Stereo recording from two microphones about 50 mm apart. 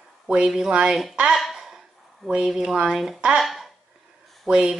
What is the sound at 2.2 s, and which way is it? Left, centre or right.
Speech, centre.